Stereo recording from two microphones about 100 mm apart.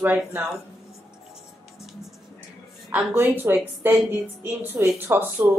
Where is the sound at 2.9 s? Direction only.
20° right (ahead or behind).